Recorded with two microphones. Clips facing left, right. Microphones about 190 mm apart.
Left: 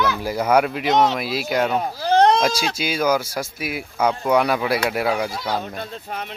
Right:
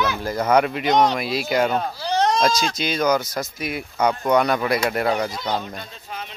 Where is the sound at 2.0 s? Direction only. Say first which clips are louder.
Left 6 dB; 60° left (ahead or behind).